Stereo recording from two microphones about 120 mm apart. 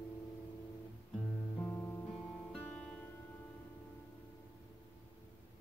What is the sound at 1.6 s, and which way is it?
Guitar, 20° left (ahead or behind).